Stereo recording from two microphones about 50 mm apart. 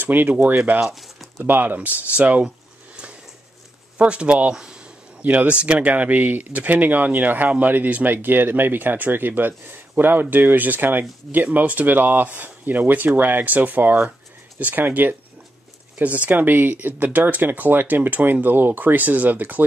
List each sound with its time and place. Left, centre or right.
0.0 s speech: right
0.7 s a sound: centre
1.4 s speech: right
4.0 s speech: right
5.2 s speech: right
5.5 s speech: right